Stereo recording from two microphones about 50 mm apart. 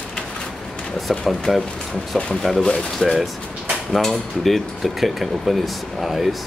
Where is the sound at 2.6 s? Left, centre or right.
Centre.